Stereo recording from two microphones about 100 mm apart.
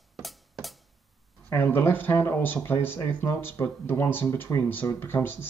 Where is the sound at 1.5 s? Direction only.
20° left (ahead or behind).